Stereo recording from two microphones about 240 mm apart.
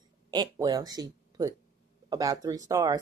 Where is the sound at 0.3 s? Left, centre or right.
Centre.